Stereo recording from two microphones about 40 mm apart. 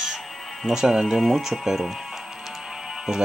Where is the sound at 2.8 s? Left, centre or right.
Centre.